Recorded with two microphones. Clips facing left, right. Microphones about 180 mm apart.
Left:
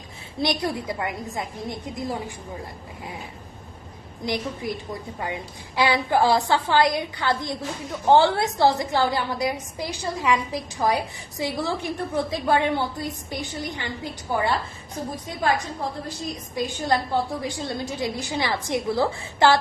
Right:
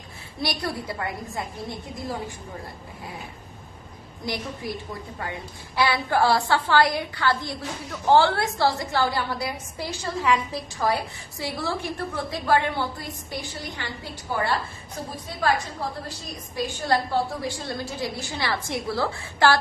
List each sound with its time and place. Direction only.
0.4 s a woman's voice: 20° left (ahead or behind)
5.2 s a woman's voice: 15° left (ahead or behind)
15.2 s a woman's voice: 20° left (ahead or behind)